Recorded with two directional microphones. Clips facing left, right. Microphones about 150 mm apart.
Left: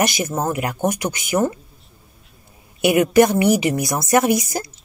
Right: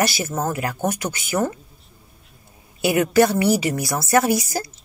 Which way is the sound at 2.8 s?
20° left (ahead or behind).